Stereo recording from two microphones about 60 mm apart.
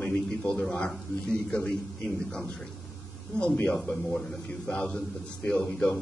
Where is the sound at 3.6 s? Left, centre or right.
Centre.